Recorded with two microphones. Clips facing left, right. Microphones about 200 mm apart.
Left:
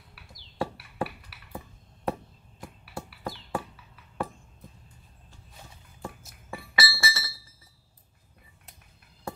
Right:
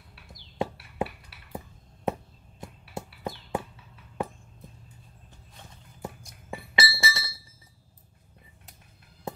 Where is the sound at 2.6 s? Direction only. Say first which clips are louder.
Right 1 dB; 25° right (ahead or behind).